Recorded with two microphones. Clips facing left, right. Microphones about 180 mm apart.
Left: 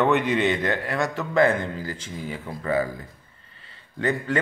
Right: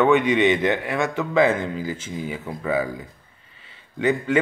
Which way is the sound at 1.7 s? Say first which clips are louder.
Right 4 dB; 15° right (ahead or behind).